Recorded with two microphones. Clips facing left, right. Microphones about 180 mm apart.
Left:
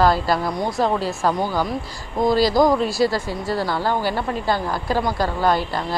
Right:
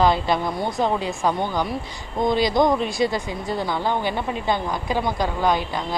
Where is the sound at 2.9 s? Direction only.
20° right (ahead or behind).